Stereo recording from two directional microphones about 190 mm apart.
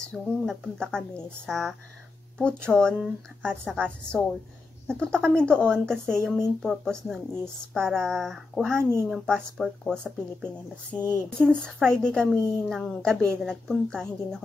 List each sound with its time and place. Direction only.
0.0 s speech: 5° left (ahead or behind)